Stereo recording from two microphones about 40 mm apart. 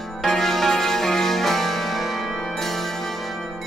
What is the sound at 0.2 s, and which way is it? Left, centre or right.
Music, centre.